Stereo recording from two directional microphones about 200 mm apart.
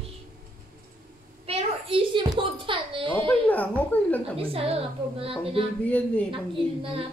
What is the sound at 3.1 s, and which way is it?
Speech, 5° left (ahead or behind).